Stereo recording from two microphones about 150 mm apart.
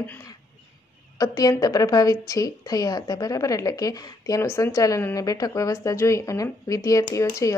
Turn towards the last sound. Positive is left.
turn(degrees=20)  # may be behind; listen again after turning